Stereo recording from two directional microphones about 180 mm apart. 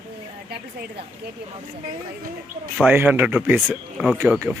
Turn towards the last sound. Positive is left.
turn(degrees=-5)  # may be behind; listen again after turning